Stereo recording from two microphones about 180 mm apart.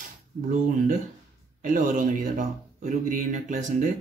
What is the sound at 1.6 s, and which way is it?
Speech, 45° right (ahead or behind).